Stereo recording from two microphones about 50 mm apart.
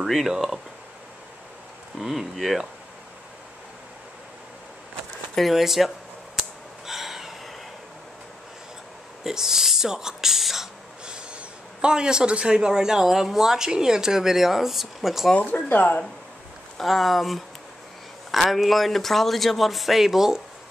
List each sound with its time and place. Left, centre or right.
0.0 s a man's voice: centre
2.0 s a man's voice: centre
5.3 s a man's voice: centre
6.9 s gasp: centre
9.2 s speech: centre
11.1 s a man's voice: centre
15.3 s speech: left
16.7 s a man's voice: centre